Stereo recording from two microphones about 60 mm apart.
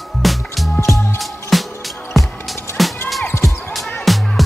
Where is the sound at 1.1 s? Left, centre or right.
Centre.